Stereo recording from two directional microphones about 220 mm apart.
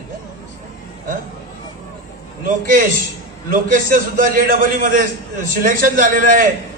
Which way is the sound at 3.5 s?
40° right (ahead or behind).